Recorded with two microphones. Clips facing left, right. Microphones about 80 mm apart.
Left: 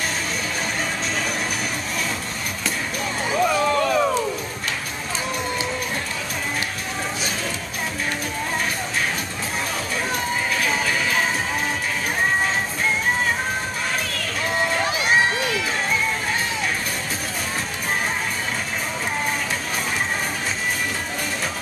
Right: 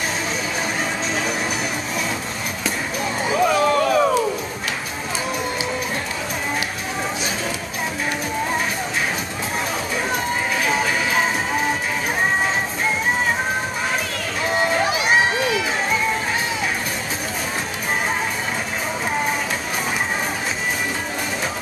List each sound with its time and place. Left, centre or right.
3.3 s a sound: centre
10.1 s music: centre
14.5 s run: centre